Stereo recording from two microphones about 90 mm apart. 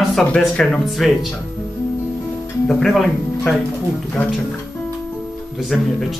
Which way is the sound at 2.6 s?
5° left (ahead or behind).